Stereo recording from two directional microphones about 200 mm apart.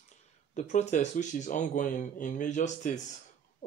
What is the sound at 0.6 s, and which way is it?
Speech, 35° left (ahead or behind).